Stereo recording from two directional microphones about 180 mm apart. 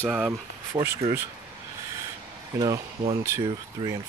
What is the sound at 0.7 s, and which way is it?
Speech, 25° right (ahead or behind).